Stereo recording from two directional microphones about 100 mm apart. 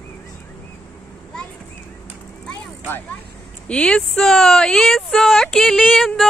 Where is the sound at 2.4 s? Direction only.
20° left (ahead or behind).